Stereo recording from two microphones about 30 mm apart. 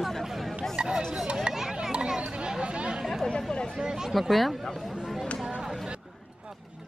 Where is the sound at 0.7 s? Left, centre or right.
Right.